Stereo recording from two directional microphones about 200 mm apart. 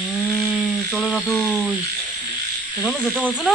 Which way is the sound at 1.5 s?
5° right (ahead or behind).